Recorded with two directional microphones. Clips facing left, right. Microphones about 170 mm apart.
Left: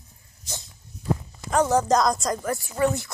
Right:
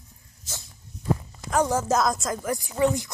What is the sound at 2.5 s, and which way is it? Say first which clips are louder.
Speech: right 1 dB; 15° right (ahead or behind).